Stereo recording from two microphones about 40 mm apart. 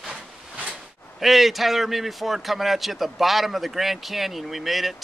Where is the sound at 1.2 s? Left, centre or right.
Centre.